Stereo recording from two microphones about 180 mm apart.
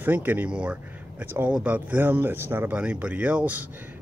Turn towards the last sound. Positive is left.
turn(degrees=-10)  # may be behind; listen again after turning